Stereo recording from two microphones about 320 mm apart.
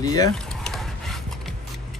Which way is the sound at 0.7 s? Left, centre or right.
Centre.